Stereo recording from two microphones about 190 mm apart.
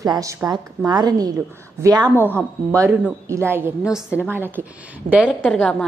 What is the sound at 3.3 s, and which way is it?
A woman's voice, 10° right (ahead or behind).